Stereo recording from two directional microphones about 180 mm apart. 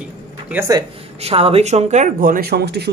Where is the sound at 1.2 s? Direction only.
35° right (ahead or behind); by 2.9 s 65° right (ahead or behind).